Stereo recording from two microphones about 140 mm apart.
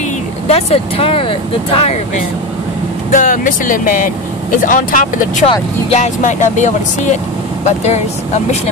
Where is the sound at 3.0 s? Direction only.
70° left (ahead or behind).